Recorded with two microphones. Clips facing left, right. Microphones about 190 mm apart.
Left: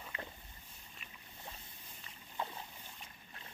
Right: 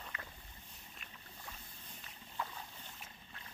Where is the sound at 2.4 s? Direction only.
25° left (ahead or behind).